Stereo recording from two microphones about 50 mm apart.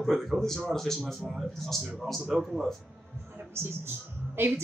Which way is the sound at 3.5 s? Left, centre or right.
Right.